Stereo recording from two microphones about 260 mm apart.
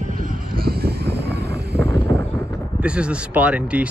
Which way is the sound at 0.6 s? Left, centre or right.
Right.